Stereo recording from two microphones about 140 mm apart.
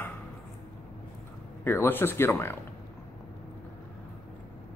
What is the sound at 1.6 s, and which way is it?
Speech, 15° left (ahead or behind).